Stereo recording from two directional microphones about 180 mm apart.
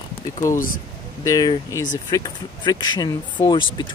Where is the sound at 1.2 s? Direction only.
20° left (ahead or behind).